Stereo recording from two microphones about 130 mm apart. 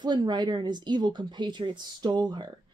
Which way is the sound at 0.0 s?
35° right (ahead or behind).